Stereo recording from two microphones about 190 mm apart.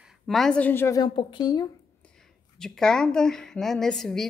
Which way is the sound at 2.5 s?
5° left (ahead or behind).